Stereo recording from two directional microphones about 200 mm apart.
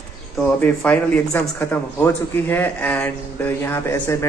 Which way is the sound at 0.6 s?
10° left (ahead or behind).